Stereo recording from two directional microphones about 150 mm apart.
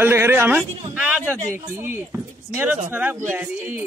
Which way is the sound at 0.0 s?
15° right (ahead or behind).